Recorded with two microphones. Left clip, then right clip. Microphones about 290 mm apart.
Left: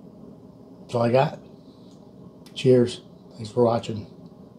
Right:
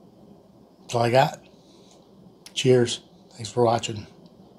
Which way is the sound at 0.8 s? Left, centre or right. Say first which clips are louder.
Right 1 dB; right.